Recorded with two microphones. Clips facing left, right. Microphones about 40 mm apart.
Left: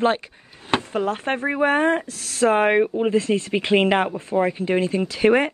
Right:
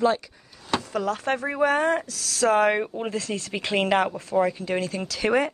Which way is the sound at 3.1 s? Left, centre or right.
Left.